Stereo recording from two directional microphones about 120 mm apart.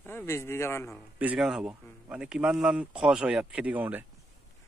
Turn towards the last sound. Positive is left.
turn(degrees=-15)  # may be behind; listen again after turning